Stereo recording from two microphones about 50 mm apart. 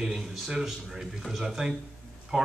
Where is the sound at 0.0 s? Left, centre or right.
Centre.